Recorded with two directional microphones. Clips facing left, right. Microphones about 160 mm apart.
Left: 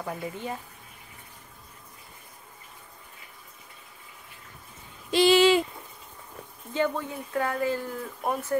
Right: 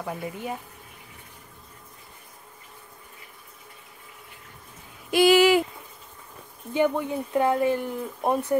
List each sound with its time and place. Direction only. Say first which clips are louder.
0.0 s speech: right 1 dB; 5° right (ahead or behind)
5.1 s a sound: right 2 dB; 10° right (ahead or behind)
6.7 s speech: right 4 dB; 15° right (ahead or behind)